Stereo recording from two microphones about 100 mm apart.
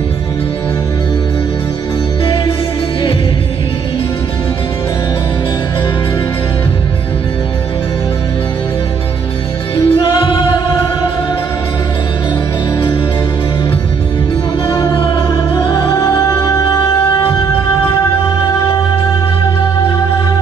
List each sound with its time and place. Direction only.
9.8 s music: 60° left (ahead or behind)
15.0 s music: 50° left (ahead or behind)